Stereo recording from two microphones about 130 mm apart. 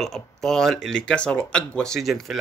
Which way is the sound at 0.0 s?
5° left (ahead or behind).